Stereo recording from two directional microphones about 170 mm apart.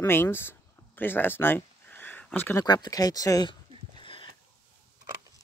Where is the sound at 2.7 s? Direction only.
25° left (ahead or behind).